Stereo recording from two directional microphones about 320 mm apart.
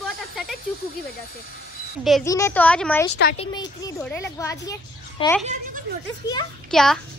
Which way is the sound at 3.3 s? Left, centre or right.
Centre.